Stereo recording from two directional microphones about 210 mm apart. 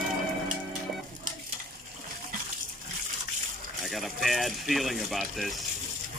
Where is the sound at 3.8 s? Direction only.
Centre (ahead or behind).